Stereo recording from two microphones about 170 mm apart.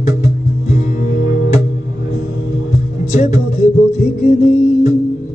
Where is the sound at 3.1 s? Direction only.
45° left (ahead or behind).